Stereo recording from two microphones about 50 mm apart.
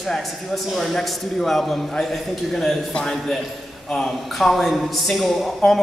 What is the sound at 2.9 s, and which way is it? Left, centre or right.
Speech, centre.